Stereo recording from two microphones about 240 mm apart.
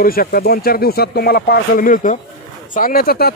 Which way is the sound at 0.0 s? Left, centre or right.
Left.